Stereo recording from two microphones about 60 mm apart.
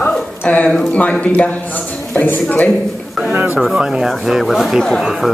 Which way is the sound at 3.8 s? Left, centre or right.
Centre.